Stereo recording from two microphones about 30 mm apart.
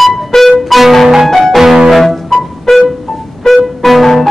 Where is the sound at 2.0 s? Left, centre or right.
Centre.